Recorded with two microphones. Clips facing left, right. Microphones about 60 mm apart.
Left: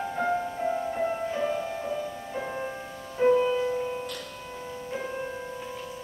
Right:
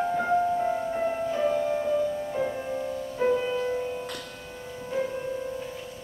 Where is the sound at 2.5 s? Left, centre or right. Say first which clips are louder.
Right 2 dB; left.